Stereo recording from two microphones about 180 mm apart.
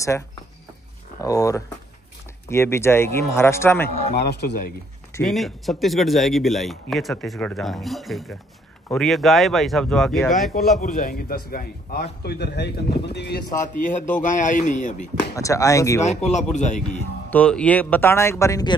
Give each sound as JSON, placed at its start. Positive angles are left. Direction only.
{"t": 1.2, "sound": "speech", "side_deg": 20}
{"t": 4.1, "sound": "a man's voice", "side_deg": 65}
{"t": 5.2, "sound": "speech", "side_deg": 0}
{"t": 10.5, "sound": "a man's voice", "side_deg": 50}
{"t": 15.3, "sound": "speech", "side_deg": 15}
{"t": 16.0, "sound": "speech", "side_deg": 40}
{"t": 17.3, "sound": "speech", "side_deg": 5}